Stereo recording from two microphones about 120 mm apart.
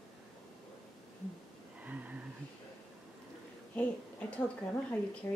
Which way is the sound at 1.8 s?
10° right (ahead or behind).